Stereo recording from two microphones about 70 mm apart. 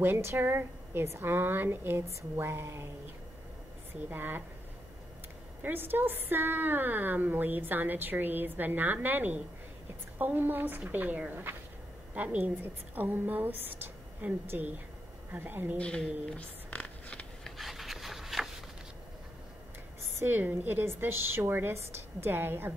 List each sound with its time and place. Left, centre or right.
0.0 s a woman's voice: right
4.1 s a woman's voice: right
5.6 s a woman's voice: right
15.8 s speech: centre
16.3 s a sound: centre
17.6 s rub: centre
20.2 s a woman's voice: right